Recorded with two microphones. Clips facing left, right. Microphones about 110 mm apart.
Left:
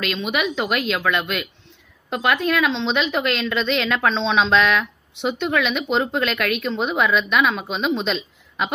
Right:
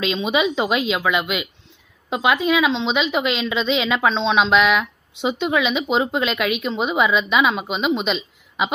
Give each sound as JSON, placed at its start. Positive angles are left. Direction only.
{"t": 0.0, "sound": "a woman's voice", "side_deg": -20}